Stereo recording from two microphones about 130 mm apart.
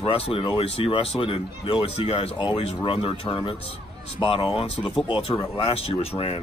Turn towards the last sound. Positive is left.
turn(degrees=50)  # may be behind; listen again after turning